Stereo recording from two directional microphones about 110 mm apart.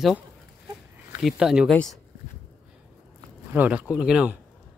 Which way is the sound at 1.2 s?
5° right (ahead or behind).